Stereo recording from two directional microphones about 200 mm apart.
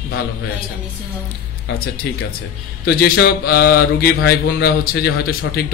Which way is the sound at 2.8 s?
50° left (ahead or behind).